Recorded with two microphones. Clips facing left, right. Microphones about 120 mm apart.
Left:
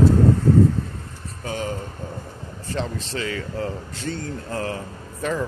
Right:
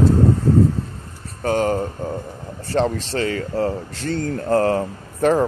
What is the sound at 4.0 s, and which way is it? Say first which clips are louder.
Speech: right 6 dB; 50° right (ahead or behind).